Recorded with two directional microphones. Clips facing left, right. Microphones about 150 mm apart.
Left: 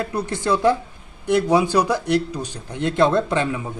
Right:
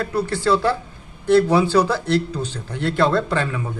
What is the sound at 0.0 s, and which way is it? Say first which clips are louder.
A man's voice: right 3 dB; 20° left (ahead or behind).